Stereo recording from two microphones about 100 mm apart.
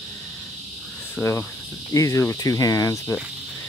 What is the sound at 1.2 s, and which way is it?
Cricket, 30° left (ahead or behind).